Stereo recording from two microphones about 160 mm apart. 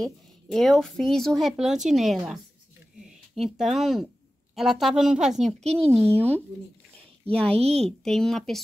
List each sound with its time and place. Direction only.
0.0 s speech: centre (ahead or behind)
7.4 s a woman's voice: 40° right (ahead or behind)
8.0 s speech: 5° left (ahead or behind)